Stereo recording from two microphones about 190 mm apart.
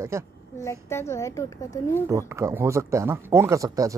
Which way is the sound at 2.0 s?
15° right (ahead or behind).